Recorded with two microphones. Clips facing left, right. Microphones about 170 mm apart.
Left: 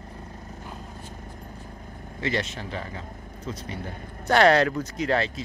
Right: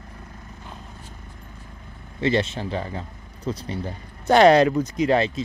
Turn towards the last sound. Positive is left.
turn(degrees=-20)  # may be behind; listen again after turning